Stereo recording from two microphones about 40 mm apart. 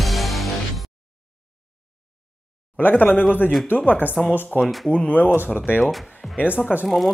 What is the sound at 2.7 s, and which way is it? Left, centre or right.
Speech, left.